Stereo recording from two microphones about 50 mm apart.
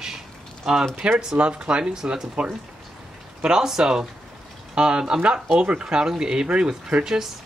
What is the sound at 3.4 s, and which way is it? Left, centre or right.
Speech, centre.